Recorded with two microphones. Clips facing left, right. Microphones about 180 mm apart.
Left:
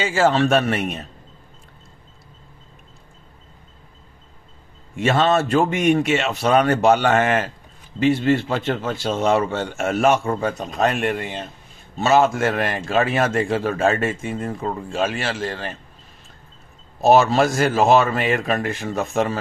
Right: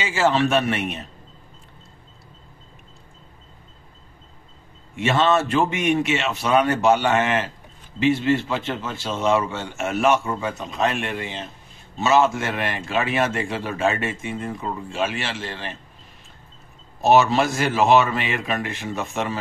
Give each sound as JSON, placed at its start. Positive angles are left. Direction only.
{"t": 0.0, "sound": "a man's voice", "side_deg": 45}
{"t": 5.0, "sound": "a man's voice", "side_deg": 45}
{"t": 17.0, "sound": "a man's voice", "side_deg": 40}